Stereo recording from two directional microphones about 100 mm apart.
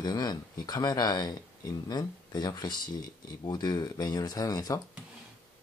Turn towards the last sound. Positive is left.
turn(degrees=40)  # may be behind; listen again after turning